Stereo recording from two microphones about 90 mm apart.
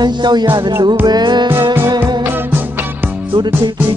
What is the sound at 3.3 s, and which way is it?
Music, 60° right (ahead or behind).